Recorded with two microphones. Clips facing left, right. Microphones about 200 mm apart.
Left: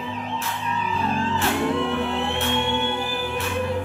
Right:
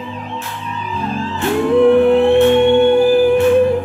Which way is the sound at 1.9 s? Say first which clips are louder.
Right 15 dB; 50° right (ahead or behind).